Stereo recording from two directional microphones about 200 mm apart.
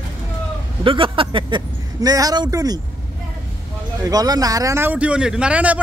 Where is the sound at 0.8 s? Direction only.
25° right (ahead or behind).